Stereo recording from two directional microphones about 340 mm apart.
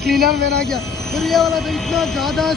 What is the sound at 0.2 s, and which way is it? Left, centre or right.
Speech, right.